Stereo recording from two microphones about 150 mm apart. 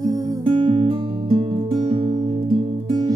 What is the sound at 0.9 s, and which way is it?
Music, 35° right (ahead or behind).